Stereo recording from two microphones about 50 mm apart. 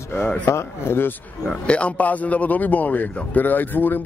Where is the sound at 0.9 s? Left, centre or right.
Left.